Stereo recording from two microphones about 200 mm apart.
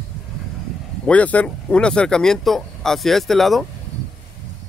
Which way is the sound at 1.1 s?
5° left (ahead or behind).